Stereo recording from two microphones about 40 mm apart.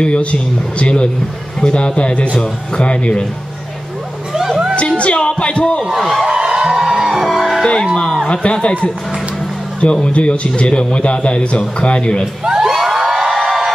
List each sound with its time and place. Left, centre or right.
0.0 s a man's voice: left
4.3 s a sound: centre
4.9 s a man's voice: left
5.9 s speech: centre
6.2 s music: centre
7.2 s music: centre
8.3 s a man's voice: left
10.0 s a man's voice: left
12.4 s crowd: centre